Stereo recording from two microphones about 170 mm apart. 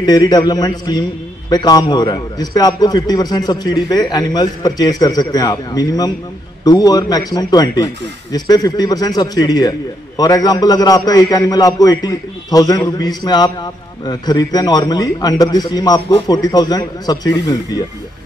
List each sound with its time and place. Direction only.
0.0 s a man's voice: 25° left (ahead or behind)